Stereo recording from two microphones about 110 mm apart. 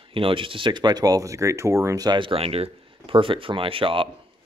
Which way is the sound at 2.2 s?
60° right (ahead or behind).